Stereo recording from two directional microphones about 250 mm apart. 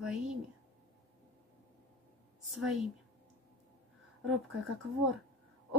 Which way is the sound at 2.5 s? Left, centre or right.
Centre.